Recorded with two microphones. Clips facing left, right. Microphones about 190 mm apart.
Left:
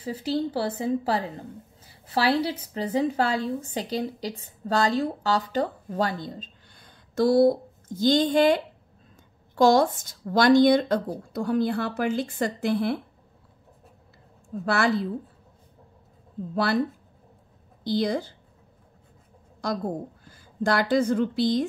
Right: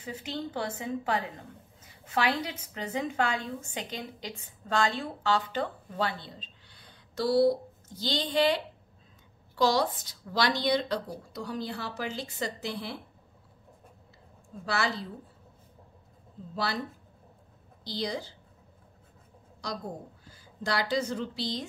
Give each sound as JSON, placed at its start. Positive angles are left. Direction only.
{"t": 0.0, "sound": "a woman's voice", "side_deg": 35}
{"t": 14.6, "sound": "speech", "side_deg": 55}
{"t": 16.5, "sound": "speech", "side_deg": 55}
{"t": 17.8, "sound": "speech", "side_deg": 55}
{"t": 19.6, "sound": "speech", "side_deg": 55}